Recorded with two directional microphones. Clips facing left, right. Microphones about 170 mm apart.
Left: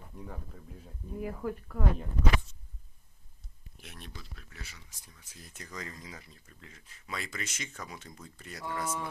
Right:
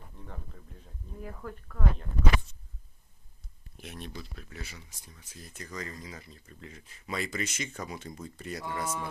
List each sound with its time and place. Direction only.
0.2 s speech: 5° left (ahead or behind)
3.8 s speech: 5° right (ahead or behind)
4.4 s speech: 25° right (ahead or behind)
5.3 s speech: 15° left (ahead or behind); by 9.0 s 5° right (ahead or behind)